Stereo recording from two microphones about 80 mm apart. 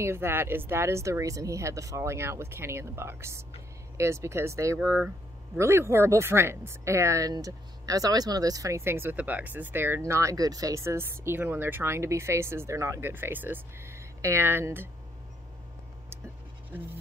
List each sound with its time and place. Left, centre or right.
0.0 s speech: right
9.1 s speech: centre